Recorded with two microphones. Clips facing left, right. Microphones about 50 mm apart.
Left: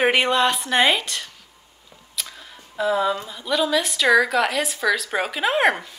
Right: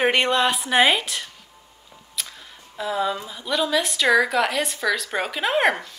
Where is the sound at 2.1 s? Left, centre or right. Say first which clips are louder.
Left 1 dB; centre.